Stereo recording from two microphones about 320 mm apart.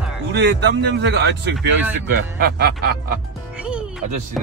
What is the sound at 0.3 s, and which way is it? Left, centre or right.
Speech, right.